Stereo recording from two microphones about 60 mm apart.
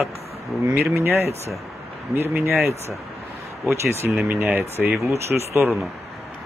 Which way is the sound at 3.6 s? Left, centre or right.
Right.